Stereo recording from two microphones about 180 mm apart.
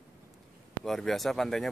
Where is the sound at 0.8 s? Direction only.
Centre (ahead or behind).